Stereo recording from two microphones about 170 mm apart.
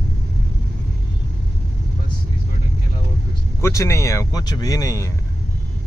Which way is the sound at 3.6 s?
15° left (ahead or behind).